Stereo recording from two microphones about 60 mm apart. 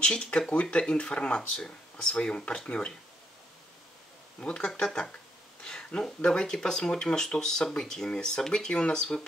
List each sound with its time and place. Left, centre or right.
0.0 s speech: centre
4.4 s speech: centre